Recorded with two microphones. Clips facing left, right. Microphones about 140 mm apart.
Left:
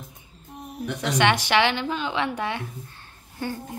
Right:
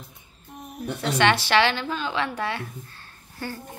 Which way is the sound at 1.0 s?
15° left (ahead or behind).